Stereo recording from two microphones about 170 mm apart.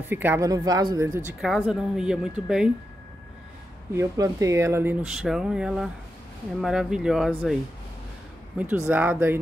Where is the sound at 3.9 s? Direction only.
15° right (ahead or behind).